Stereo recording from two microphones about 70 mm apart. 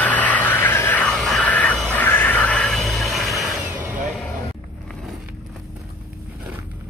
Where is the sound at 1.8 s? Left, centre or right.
Left.